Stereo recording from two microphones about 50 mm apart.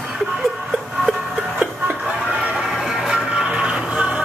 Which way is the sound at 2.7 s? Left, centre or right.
Centre.